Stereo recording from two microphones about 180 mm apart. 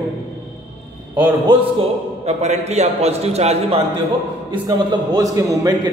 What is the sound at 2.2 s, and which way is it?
A man's voice, 40° right (ahead or behind).